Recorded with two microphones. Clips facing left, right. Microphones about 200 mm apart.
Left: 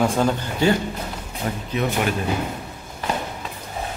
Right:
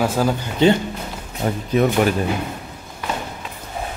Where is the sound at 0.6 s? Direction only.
20° right (ahead or behind).